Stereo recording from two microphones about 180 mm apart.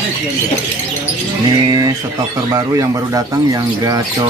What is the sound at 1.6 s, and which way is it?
Speech, 20° right (ahead or behind).